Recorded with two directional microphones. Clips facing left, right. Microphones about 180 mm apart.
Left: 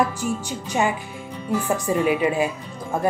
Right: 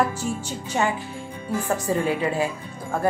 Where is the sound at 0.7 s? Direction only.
15° left (ahead or behind).